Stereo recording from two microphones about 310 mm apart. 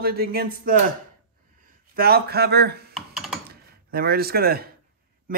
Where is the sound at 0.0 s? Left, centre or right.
Right.